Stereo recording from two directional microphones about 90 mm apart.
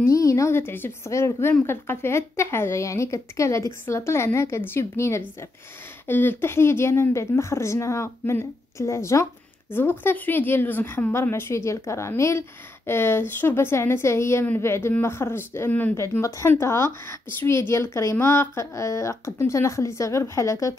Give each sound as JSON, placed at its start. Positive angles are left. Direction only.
{"t": 0.0, "sound": "a woman's voice", "side_deg": 35}